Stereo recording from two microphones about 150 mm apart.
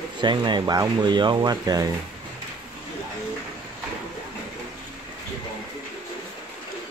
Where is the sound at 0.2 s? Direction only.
30° right (ahead or behind).